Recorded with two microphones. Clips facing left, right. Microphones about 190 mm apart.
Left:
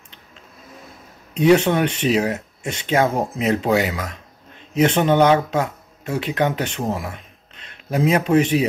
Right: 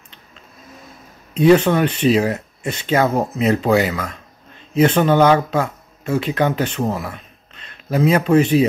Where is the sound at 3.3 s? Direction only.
15° left (ahead or behind).